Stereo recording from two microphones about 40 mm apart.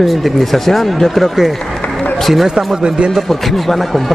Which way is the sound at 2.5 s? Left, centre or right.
Right.